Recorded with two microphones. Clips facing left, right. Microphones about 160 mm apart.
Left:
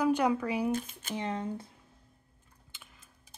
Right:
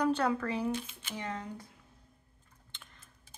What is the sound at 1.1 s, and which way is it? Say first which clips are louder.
Speech: left 5 dB; 25° left (ahead or behind).